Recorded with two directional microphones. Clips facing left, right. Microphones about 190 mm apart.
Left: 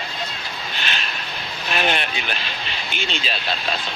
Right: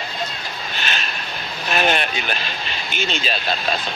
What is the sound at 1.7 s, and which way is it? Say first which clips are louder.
Speech: right 3 dB; 45° right (ahead or behind).